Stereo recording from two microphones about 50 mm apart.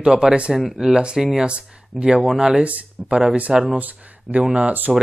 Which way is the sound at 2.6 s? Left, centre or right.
Right.